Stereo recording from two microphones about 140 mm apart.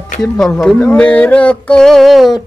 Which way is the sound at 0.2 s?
5° left (ahead or behind).